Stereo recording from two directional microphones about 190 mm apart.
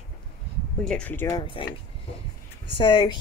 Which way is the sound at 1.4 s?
25° left (ahead or behind).